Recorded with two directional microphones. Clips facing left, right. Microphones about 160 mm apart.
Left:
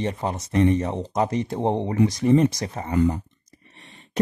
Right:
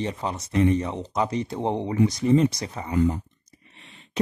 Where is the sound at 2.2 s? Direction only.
55° left (ahead or behind).